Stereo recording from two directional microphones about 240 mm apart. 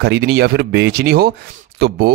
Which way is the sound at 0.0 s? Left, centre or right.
Right.